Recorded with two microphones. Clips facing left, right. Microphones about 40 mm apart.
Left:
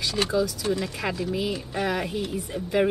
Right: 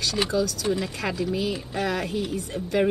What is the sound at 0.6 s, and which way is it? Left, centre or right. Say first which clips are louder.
Speech: right 1 dB; centre.